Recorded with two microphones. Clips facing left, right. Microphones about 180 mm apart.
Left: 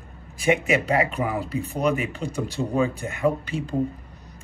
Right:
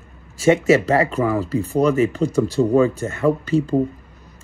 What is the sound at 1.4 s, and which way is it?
Speech, 35° right (ahead or behind).